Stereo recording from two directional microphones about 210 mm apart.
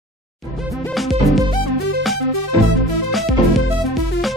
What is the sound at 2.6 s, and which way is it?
Music, centre (ahead or behind).